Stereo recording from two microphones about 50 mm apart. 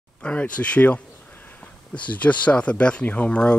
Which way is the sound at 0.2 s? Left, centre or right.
Left.